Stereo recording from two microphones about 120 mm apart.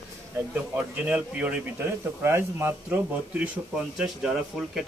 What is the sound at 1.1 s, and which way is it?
Speech, 10° right (ahead or behind).